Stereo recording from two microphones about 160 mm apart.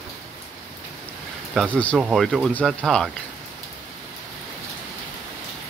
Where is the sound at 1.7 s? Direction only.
10° left (ahead or behind).